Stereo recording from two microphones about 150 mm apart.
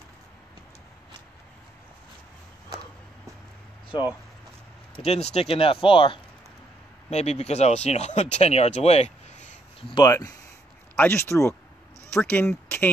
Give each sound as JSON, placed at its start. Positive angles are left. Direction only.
{"t": 5.0, "sound": "speech", "side_deg": 45}
{"t": 9.9, "sound": "speech", "side_deg": 25}